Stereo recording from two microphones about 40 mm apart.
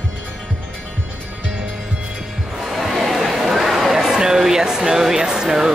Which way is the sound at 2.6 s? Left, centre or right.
Centre.